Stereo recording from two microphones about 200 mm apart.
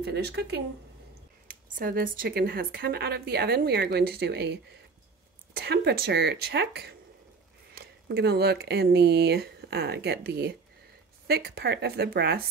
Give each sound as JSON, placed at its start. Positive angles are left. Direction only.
{"t": 0.0, "sound": "a woman's voice", "side_deg": -55}
{"t": 5.6, "sound": "a woman's voice", "side_deg": -55}